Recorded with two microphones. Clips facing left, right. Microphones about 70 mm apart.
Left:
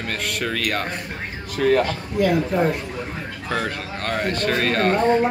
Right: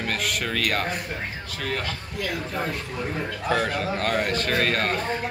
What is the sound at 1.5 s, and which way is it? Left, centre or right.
Speech, centre.